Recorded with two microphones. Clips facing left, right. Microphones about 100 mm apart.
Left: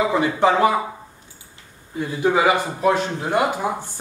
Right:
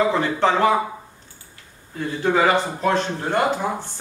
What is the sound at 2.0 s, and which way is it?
Speech, 10° left (ahead or behind).